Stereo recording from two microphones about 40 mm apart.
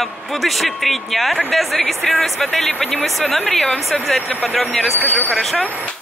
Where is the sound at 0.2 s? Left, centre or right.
Centre.